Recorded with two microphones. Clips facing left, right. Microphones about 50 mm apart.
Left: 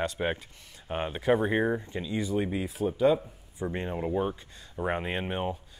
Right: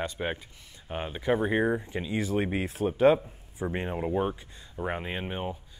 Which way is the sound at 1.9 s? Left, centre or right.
Right.